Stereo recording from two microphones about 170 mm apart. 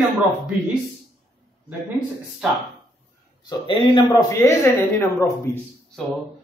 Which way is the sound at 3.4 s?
25° left (ahead or behind).